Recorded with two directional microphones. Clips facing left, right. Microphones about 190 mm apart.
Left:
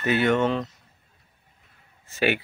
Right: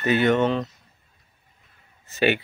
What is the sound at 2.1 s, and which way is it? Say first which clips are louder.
Speech: right 2 dB; 5° left (ahead or behind).